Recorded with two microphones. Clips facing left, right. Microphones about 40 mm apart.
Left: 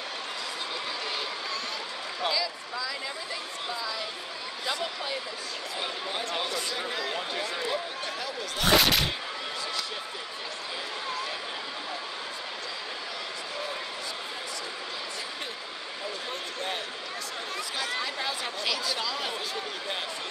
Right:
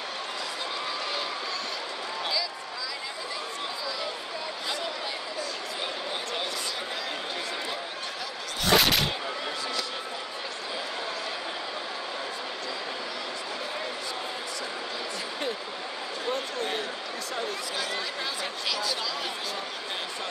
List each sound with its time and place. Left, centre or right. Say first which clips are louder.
8.7 s whip: right 1 dB; centre
17.9 s chatter: left 1 dB; centre